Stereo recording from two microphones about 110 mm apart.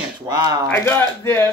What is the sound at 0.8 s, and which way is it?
Speech, 20° left (ahead or behind).